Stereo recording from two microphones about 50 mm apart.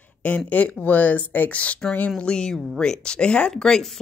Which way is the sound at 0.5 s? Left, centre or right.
Left.